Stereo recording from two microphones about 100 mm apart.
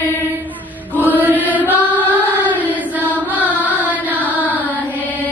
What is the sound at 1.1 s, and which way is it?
Chant, 15° right (ahead or behind).